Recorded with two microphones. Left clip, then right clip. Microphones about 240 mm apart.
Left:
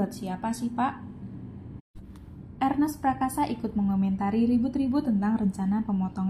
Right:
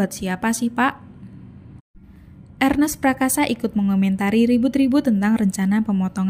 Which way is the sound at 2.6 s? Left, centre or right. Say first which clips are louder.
Right 7 dB; right.